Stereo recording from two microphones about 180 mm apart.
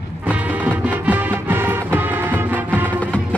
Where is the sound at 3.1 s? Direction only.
5° left (ahead or behind).